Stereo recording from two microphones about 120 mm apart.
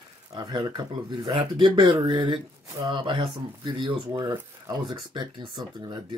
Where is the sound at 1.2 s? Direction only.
45° right (ahead or behind).